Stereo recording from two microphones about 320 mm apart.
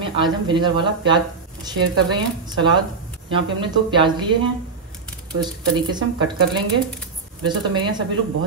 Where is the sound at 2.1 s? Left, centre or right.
Centre.